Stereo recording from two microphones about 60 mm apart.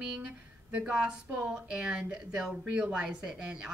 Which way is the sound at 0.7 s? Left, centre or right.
Right.